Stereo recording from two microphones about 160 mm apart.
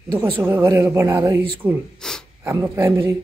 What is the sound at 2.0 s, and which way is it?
Gasp, 5° left (ahead or behind).